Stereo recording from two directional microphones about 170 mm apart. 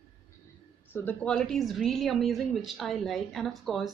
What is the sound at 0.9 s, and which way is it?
Speech, 10° left (ahead or behind).